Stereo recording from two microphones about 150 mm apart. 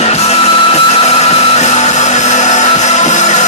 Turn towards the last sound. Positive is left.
turn(degrees=55)  # may be behind; listen again after turning